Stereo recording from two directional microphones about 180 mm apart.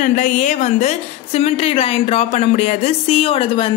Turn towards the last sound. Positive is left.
turn(degrees=30)  # may be behind; listen again after turning